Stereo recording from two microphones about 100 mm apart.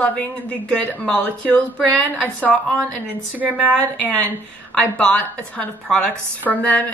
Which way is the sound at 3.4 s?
15° right (ahead or behind).